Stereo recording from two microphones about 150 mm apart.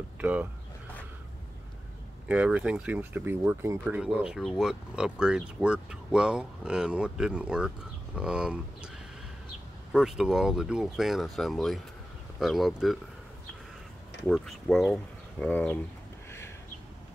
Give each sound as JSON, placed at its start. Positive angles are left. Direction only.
{"t": 0.2, "sound": "speech", "side_deg": -10}
{"t": 2.2, "sound": "speech", "side_deg": -10}
{"t": 3.9, "sound": "speech", "side_deg": -5}
{"t": 9.9, "sound": "speech", "side_deg": -5}
{"t": 14.2, "sound": "speech", "side_deg": 5}
{"t": 16.3, "sound": "a sound", "side_deg": 15}